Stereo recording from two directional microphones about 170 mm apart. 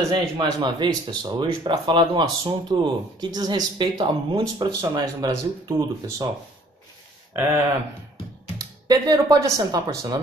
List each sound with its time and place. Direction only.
0.1 s speech: 25° right (ahead or behind)
8.5 s speech: 25° right (ahead or behind)